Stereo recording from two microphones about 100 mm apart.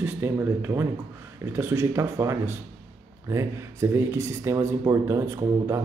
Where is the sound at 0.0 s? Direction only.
25° right (ahead or behind).